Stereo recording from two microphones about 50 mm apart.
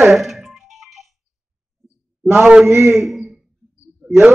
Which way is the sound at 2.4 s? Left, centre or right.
Centre.